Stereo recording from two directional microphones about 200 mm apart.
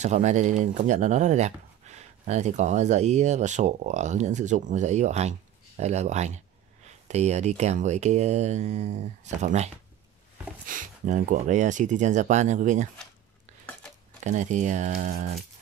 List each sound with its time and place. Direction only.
0.0 s speech: 35° right (ahead or behind)
10.7 s speech: 40° right (ahead or behind)
14.2 s speech: 35° right (ahead or behind)